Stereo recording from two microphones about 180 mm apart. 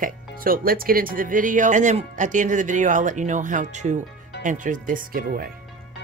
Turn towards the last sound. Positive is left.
turn(degrees=-50)  # may be behind; listen again after turning